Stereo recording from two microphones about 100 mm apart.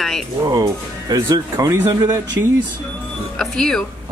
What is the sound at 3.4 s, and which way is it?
Speech, 5° left (ahead or behind).